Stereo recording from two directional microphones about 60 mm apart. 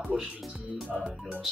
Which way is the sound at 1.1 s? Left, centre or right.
Right.